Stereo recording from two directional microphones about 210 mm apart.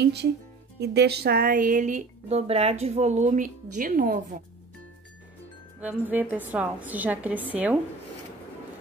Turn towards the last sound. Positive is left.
turn(degrees=-5)  # may be behind; listen again after turning